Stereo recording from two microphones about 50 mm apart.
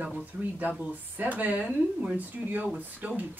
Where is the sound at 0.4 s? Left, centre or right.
Right.